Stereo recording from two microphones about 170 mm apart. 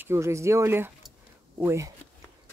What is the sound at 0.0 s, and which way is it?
Speech, 15° right (ahead or behind).